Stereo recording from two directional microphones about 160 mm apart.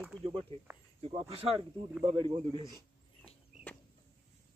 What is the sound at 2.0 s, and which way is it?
Speech, 35° right (ahead or behind).